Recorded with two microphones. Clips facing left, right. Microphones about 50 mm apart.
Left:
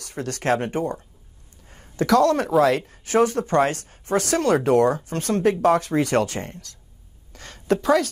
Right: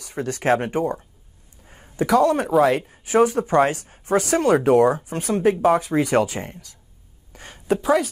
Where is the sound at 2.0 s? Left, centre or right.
Centre.